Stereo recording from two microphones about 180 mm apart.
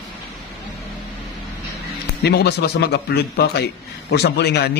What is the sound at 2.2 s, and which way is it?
A man's voice, 65° left (ahead or behind).